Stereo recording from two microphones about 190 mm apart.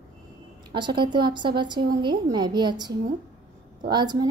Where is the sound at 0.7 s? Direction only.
25° right (ahead or behind).